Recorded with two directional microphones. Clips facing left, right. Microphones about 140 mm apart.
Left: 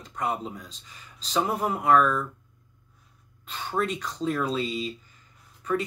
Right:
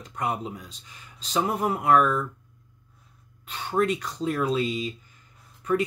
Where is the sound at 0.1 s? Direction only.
10° right (ahead or behind).